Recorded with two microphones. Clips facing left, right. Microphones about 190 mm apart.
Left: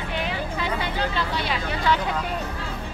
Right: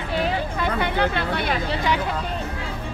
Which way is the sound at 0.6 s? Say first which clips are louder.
Right 5 dB; 60° right (ahead or behind).